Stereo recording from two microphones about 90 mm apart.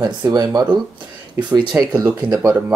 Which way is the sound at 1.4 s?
55° right (ahead or behind).